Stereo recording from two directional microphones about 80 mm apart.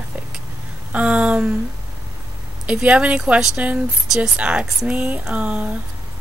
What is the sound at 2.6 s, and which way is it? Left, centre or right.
A woman's voice, centre.